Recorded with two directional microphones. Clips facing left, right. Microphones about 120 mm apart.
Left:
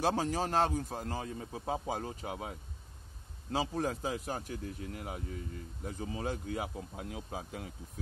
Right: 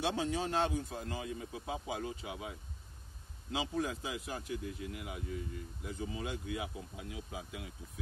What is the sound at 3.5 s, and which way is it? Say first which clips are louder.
A man's voice: left 3 dB; 40° left (ahead or behind).